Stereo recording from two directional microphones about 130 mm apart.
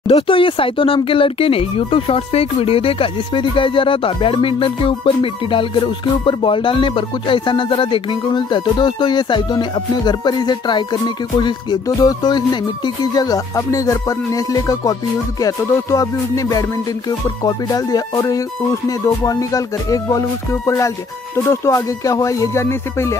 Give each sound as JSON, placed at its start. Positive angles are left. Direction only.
{"t": 0.1, "sound": "speech", "side_deg": 40}
{"t": 15.4, "sound": "music", "side_deg": 25}